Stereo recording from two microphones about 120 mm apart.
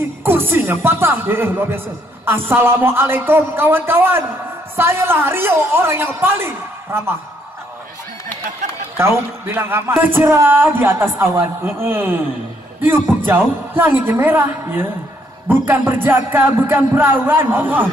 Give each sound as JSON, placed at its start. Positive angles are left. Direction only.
{"t": 0.2, "sound": "speech", "side_deg": -20}
{"t": 8.9, "sound": "speech", "side_deg": -20}
{"t": 12.8, "sound": "music", "side_deg": -15}